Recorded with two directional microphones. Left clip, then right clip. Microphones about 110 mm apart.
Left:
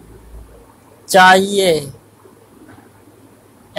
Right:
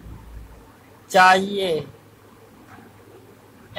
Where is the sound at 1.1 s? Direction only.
30° left (ahead or behind).